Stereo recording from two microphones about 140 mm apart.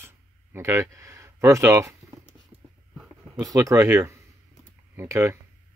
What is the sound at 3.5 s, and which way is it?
Speech, 25° right (ahead or behind).